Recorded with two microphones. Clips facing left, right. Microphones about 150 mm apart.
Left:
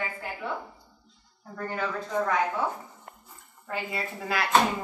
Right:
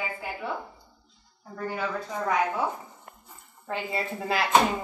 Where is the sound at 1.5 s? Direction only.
5° right (ahead or behind).